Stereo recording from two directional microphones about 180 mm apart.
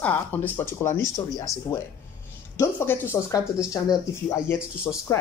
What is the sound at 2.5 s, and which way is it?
Speech, 15° left (ahead or behind).